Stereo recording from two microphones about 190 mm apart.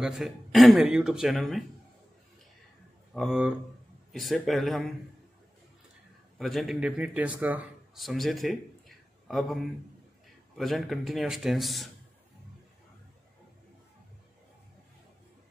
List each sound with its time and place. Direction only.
0.0 s speech: centre (ahead or behind)
3.2 s speech: 5° right (ahead or behind)
6.3 s a man's voice: centre (ahead or behind)
10.6 s speech: centre (ahead or behind)